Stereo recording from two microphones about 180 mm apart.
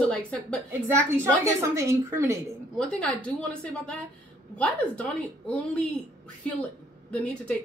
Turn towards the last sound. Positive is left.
turn(degrees=5)  # may be behind; listen again after turning